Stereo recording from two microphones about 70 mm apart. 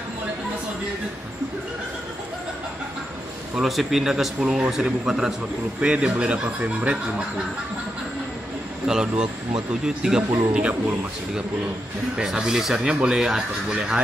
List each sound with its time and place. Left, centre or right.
3.6 s speech: centre
8.8 s speech: centre
10.5 s speech: right
12.2 s speech: centre